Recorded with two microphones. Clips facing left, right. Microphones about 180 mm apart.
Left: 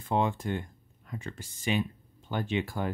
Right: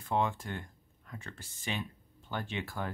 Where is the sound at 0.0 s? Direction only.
20° left (ahead or behind).